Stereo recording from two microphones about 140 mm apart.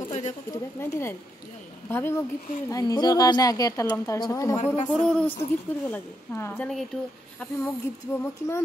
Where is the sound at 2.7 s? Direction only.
30° left (ahead or behind).